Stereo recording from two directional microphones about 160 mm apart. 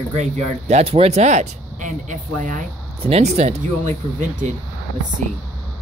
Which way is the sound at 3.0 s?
40° right (ahead or behind).